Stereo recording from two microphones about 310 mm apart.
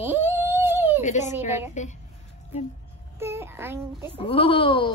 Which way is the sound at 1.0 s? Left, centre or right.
Left.